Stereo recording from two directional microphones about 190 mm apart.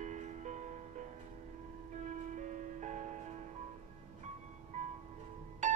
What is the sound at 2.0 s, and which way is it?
Music, 40° right (ahead or behind).